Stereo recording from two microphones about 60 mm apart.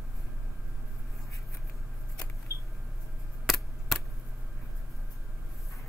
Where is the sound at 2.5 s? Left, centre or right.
Left.